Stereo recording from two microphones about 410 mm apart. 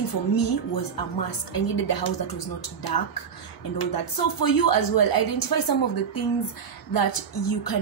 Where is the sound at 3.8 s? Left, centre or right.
Left.